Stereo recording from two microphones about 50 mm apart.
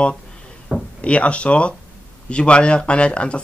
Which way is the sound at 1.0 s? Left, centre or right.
Left.